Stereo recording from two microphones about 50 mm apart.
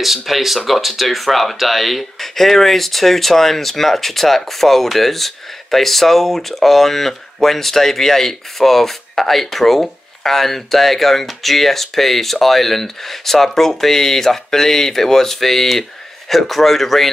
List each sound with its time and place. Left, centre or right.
0.0 s speech: centre